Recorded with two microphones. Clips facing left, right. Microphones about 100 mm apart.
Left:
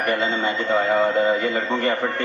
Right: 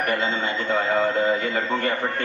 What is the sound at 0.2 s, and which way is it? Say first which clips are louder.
Speech: left 2 dB; 20° left (ahead or behind).